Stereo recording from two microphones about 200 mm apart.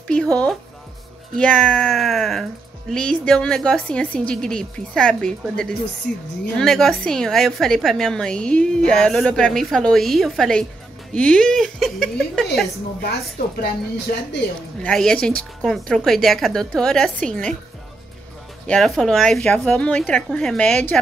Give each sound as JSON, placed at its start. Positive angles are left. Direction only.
{"t": 1.3, "sound": "a woman's voice", "side_deg": 5}
{"t": 13.0, "sound": "a woman's voice", "side_deg": 50}
{"t": 14.8, "sound": "a woman's voice", "side_deg": 5}
{"t": 18.7, "sound": "a woman's voice", "side_deg": 0}